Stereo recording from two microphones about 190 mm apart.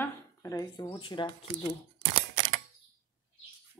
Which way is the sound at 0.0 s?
15° left (ahead or behind).